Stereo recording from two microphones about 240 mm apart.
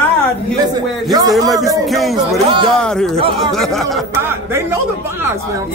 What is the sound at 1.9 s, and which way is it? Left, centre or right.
Speech, centre.